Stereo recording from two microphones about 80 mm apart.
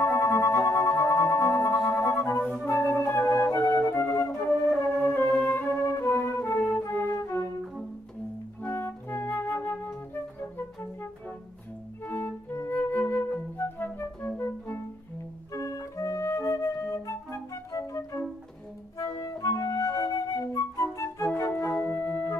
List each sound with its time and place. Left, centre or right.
0.0 s music: left
2.0 s music: left
4.0 s flute: left
4.9 s music: left
8.6 s music: left
12.0 s music: left
12.6 s flute: left
15.5 s flute: left
19.2 s flute: left
21.3 s organ: left